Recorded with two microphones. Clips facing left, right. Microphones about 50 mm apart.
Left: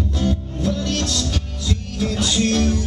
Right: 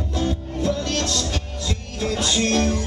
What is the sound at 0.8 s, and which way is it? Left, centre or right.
Music, centre.